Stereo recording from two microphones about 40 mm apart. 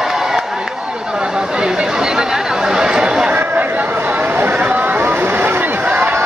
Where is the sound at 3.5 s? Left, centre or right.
Right.